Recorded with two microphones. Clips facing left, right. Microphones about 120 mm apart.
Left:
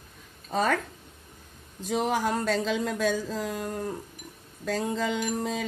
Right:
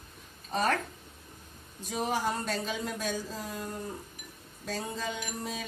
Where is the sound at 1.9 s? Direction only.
90° left.